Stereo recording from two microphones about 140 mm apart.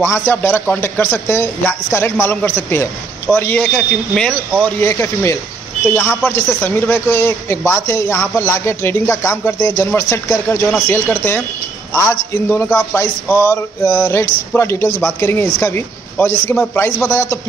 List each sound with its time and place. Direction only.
0.0 s a man's voice: 15° left (ahead or behind)
4.7 s a man's voice: 20° left (ahead or behind)